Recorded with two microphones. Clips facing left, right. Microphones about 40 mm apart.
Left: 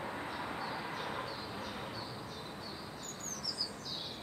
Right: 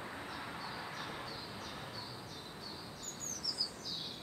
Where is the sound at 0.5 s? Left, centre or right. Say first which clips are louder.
Left 4 dB; left.